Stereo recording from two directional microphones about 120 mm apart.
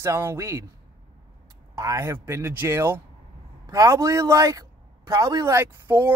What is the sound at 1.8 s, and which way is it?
A man's voice, 25° right (ahead or behind).